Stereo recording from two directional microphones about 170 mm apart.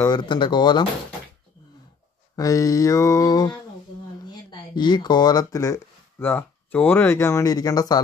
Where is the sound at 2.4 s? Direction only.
20° left (ahead or behind).